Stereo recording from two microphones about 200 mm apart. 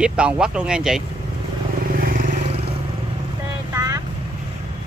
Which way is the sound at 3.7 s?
15° right (ahead or behind).